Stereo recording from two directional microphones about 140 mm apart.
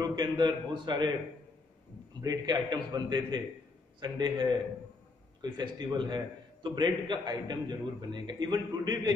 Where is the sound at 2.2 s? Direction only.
30° right (ahead or behind).